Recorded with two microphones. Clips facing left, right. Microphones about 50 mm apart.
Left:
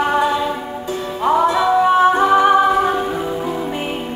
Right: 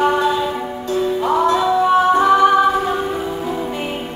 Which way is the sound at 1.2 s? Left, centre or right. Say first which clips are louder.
Left 3 dB; centre.